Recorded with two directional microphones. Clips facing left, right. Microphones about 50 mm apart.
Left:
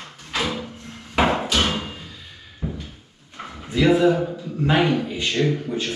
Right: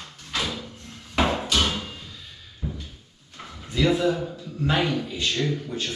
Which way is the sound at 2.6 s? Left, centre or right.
Left.